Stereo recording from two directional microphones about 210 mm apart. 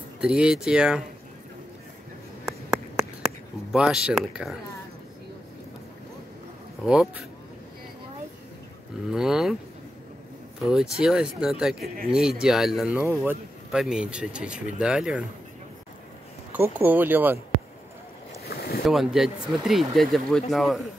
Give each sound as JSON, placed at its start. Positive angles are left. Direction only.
{"t": 0.2, "sound": "speech", "side_deg": -5}
{"t": 2.4, "sound": "a sound", "side_deg": 0}
{"t": 3.7, "sound": "speech", "side_deg": -5}
{"t": 6.8, "sound": "speech", "side_deg": -5}
{"t": 9.1, "sound": "speech", "side_deg": 0}
{"t": 10.6, "sound": "speech", "side_deg": -5}
{"t": 16.5, "sound": "speech", "side_deg": -10}
{"t": 18.5, "sound": "boat", "side_deg": 45}
{"t": 18.9, "sound": "speech", "side_deg": 0}